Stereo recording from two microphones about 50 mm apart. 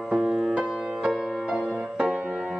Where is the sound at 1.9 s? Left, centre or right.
Centre.